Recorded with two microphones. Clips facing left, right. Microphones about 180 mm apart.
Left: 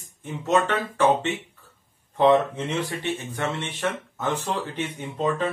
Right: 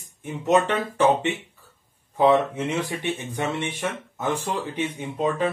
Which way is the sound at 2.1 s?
5° right (ahead or behind).